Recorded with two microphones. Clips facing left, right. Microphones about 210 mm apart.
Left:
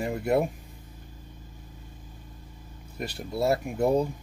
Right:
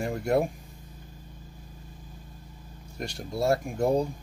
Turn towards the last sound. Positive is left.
turn(degrees=5)  # may be behind; listen again after turning